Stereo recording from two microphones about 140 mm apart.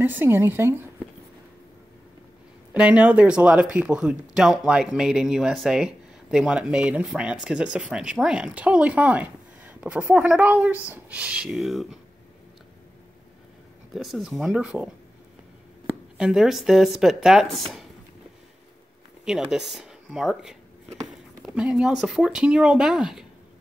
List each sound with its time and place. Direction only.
0.0 s speech: 15° right (ahead or behind)
2.7 s speech: 10° right (ahead or behind)
13.9 s speech: centre (ahead or behind)
16.2 s speech: 5° right (ahead or behind)
19.2 s speech: 5° right (ahead or behind)